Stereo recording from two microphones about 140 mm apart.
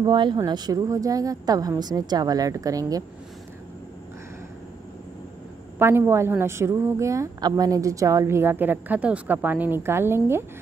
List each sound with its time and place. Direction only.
0.0 s speech: 35° right (ahead or behind)
5.8 s a woman's voice: 15° right (ahead or behind)